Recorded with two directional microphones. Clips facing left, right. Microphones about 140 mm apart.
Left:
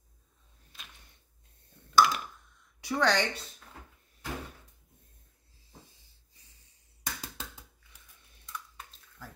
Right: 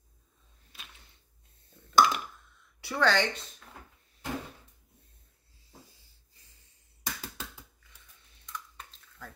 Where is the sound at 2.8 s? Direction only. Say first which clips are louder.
Right 1 dB; 15° left (ahead or behind).